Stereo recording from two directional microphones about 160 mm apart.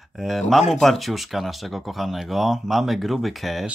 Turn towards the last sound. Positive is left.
turn(degrees=0)  # may be behind; listen again after turning